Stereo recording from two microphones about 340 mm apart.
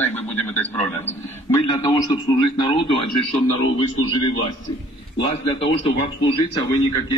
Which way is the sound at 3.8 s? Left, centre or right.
Left.